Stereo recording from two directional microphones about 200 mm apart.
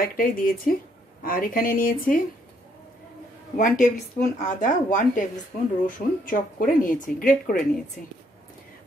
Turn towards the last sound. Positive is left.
turn(degrees=40)  # may be behind; listen again after turning